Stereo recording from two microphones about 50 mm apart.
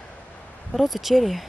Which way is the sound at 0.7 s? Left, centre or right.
Centre.